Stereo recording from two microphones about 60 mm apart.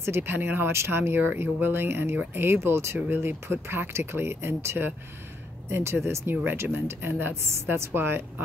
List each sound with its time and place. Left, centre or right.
0.0 s speech: right